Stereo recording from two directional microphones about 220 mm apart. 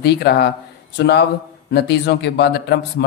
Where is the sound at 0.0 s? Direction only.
45° left (ahead or behind).